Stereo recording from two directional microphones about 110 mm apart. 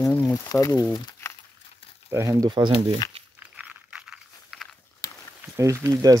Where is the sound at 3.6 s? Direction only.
10° right (ahead or behind).